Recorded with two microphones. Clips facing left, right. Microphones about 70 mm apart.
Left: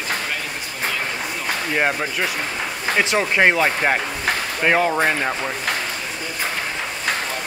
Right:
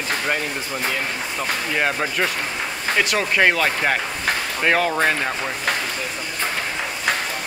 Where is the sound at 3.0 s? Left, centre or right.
Centre.